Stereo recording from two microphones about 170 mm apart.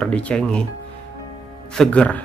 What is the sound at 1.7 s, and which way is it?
Speech, 5° left (ahead or behind).